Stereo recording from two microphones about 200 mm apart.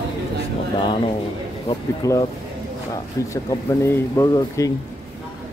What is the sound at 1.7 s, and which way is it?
Speech, 15° left (ahead or behind).